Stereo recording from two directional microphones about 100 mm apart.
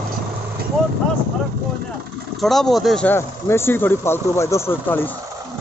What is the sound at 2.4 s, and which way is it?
Speech, centre (ahead or behind).